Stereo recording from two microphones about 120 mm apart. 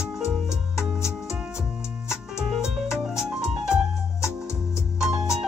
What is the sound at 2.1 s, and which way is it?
Music, 5° right (ahead or behind).